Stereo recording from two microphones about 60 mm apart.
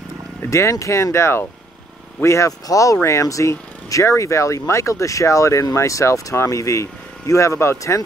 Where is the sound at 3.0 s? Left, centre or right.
Left.